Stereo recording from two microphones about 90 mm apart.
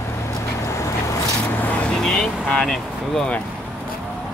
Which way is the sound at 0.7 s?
35° left (ahead or behind).